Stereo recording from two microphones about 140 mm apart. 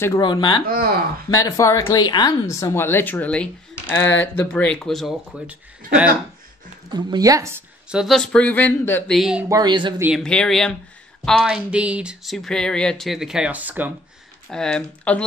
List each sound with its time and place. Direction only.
0.2 s speech: 35° left (ahead or behind)
0.7 s speech: 90° right
1.3 s speech: 25° left (ahead or behind); by 5.1 s centre (ahead or behind)
5.5 s speech: 10° right (ahead or behind)
6.9 s speech: 30° right (ahead or behind)
7.9 s speech: centre (ahead or behind); by 9.1 s 15° left (ahead or behind)
9.1 s speech: 5° right (ahead or behind)
9.5 s speech: 30° right (ahead or behind)
10.1 s speech: 5° left (ahead or behind); by 13.9 s 10° right (ahead or behind)
14.5 s speech: 5° left (ahead or behind)